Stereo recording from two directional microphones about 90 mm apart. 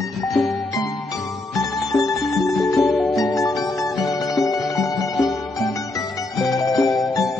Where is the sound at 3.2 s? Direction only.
40° left (ahead or behind).